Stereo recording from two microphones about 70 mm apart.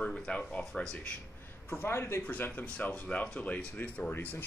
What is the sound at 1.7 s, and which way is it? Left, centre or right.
Speech, left.